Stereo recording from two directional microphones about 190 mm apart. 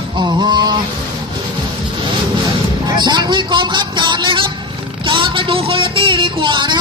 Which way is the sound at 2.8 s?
25° right (ahead or behind).